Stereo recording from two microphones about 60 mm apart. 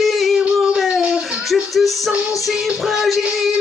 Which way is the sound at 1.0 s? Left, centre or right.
Centre.